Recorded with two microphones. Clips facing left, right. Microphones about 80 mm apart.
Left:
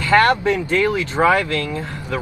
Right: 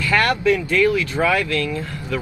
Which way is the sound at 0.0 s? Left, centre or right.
Left.